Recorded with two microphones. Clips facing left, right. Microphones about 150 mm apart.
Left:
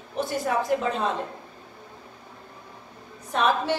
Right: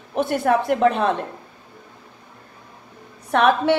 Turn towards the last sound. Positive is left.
turn(degrees=-65)  # may be behind; listen again after turning